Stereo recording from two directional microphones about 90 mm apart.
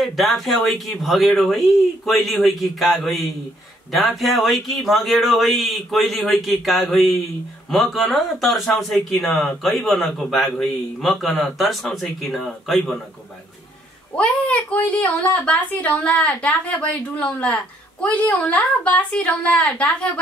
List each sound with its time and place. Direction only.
0.0 s speech: centre (ahead or behind)
14.1 s a woman's voice: 15° left (ahead or behind)